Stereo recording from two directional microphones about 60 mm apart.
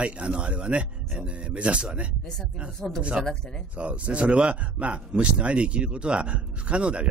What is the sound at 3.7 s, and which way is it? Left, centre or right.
Speech, right.